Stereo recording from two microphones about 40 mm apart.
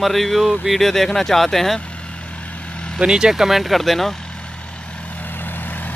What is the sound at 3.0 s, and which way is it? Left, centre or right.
Speech, centre.